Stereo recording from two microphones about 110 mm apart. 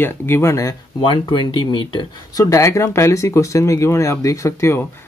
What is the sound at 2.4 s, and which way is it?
Speech, 30° left (ahead or behind).